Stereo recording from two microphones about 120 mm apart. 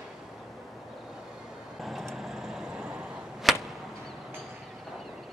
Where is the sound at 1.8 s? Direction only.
Centre (ahead or behind).